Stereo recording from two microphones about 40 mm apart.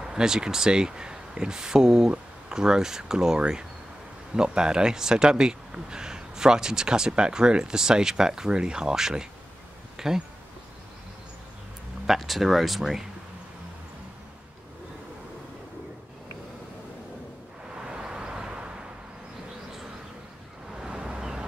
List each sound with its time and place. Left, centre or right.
0.0 s speech: centre
12.1 s speech: centre
17.7 s vehicle: right
20.7 s vehicle: centre